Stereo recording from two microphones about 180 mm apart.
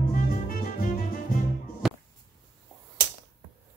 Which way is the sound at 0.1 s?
50° left (ahead or behind).